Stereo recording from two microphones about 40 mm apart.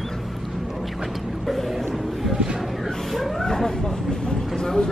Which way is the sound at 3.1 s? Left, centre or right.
Centre.